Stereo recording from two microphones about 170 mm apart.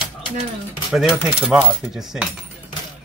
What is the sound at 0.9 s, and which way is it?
Speech, centre (ahead or behind).